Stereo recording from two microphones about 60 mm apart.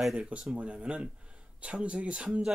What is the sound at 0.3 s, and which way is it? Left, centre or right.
Speech, centre.